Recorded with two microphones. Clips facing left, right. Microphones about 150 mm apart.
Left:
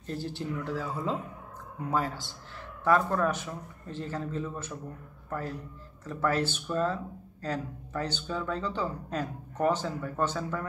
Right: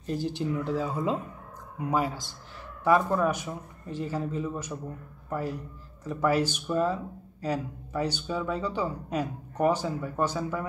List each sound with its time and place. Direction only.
0.0 s speech: 15° right (ahead or behind)